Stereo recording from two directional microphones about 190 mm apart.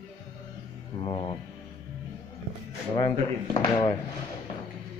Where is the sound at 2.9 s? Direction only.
20° left (ahead or behind).